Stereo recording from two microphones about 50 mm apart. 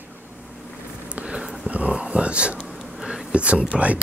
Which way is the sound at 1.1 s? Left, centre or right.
Right.